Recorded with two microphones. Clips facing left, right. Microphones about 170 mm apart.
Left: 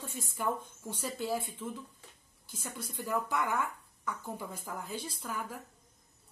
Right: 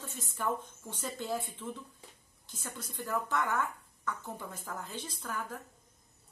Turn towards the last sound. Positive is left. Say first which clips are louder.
# even
turn(degrees=10)  # may be behind; listen again after turning